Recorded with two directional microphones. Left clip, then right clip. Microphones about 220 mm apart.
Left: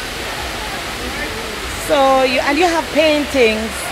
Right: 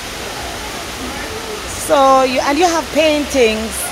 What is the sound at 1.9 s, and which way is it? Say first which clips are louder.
Speech: right 2 dB; 15° right (ahead or behind).